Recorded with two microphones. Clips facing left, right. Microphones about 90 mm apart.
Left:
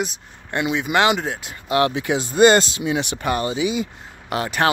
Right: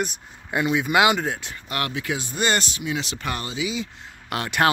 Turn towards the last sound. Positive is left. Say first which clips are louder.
# left 1 dB
turn(degrees=5)  # may be behind; listen again after turning